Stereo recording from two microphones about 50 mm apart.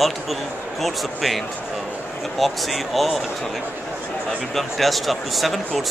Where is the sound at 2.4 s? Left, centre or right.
Centre.